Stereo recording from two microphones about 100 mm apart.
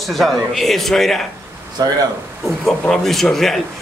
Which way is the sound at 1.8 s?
35° right (ahead or behind).